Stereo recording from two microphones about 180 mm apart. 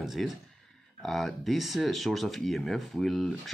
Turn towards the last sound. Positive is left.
turn(degrees=0)  # may be behind; listen again after turning